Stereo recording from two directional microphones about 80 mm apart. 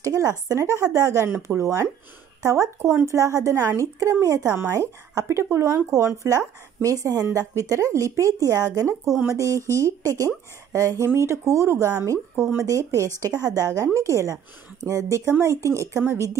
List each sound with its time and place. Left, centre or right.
0.0 s speech: right